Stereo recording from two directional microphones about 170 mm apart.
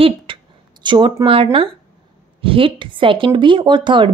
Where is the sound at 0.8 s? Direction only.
25° right (ahead or behind).